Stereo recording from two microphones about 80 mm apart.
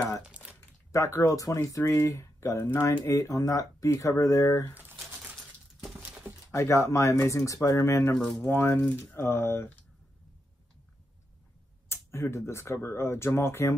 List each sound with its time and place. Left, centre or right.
0.3 s a sound: centre
0.9 s speech: left
6.5 s speech: left
8.1 s speech: centre
8.5 s speech: left
11.9 s speech: left